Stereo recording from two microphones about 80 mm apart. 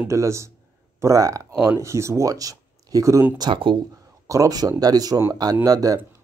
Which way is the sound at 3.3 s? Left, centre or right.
Right.